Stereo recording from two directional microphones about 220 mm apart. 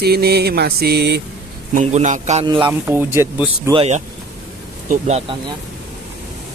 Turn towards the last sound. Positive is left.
turn(degrees=-30)  # may be behind; listen again after turning